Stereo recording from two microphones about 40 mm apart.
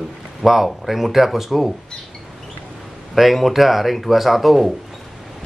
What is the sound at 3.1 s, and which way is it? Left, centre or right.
Speech, centre.